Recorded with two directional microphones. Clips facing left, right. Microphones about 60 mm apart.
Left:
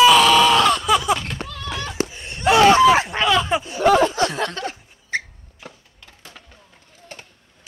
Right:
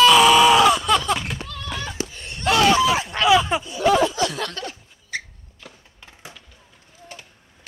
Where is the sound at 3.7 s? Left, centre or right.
Left.